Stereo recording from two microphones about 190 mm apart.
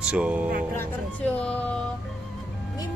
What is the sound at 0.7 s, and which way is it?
Speech, 10° left (ahead or behind).